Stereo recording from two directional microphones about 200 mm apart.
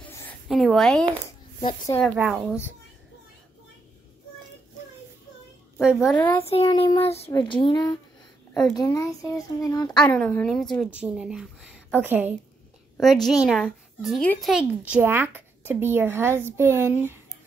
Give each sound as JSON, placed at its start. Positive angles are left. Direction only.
{"t": 0.5, "sound": "a woman's voice", "side_deg": 0}
{"t": 2.1, "sound": "speech", "side_deg": -5}
{"t": 5.8, "sound": "a woman's voice", "side_deg": -5}
{"t": 6.1, "sound": "speech", "side_deg": 10}
{"t": 6.6, "sound": "child singing", "side_deg": 20}
{"t": 8.7, "sound": "speech", "side_deg": 15}
{"t": 9.8, "sound": "a woman's voice", "side_deg": 5}